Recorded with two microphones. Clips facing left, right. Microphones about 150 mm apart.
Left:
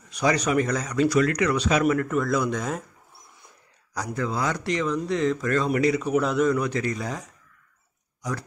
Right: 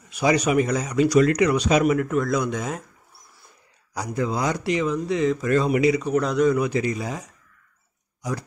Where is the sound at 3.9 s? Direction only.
10° right (ahead or behind).